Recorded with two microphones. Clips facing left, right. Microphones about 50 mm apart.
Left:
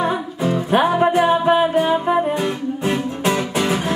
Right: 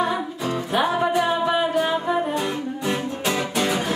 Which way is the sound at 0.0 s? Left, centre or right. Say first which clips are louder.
Left 3 dB; left.